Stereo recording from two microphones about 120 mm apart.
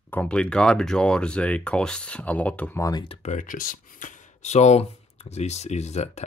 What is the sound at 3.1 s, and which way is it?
Speech, 75° left (ahead or behind).